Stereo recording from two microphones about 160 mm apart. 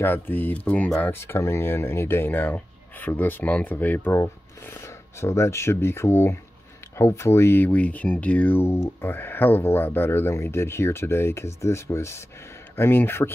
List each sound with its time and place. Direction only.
0.0 s speech: 10° left (ahead or behind)